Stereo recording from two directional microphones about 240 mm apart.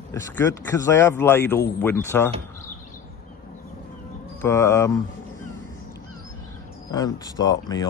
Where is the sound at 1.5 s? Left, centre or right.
Left.